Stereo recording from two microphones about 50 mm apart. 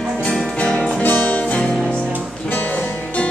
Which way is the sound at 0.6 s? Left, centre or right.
Left.